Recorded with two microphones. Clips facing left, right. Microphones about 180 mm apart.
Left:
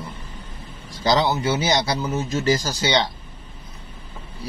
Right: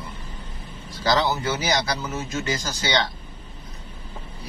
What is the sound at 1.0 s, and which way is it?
Speech, 20° left (ahead or behind).